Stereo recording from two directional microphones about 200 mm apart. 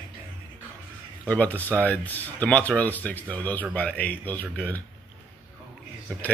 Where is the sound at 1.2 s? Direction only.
10° left (ahead or behind).